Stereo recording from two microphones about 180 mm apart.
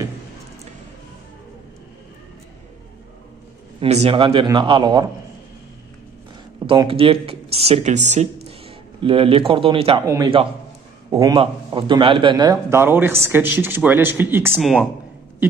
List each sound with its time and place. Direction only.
3.8 s a man's voice: 35° right (ahead or behind)
6.6 s speech: 25° right (ahead or behind)
8.5 s a man's voice: 30° right (ahead or behind)
10.0 s a man's voice: 20° right (ahead or behind)
12.6 s speech: 10° right (ahead or behind)
14.5 s speech: centre (ahead or behind)